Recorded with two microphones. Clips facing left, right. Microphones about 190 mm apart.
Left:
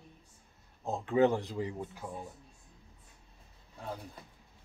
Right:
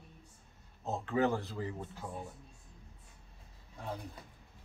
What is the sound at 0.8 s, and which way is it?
Speech, 15° left (ahead or behind).